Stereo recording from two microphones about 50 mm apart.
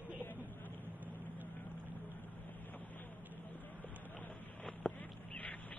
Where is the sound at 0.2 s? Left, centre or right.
Left.